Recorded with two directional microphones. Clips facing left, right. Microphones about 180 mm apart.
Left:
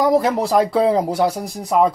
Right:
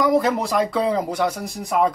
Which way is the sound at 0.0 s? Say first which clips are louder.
Left 2 dB; 35° left (ahead or behind).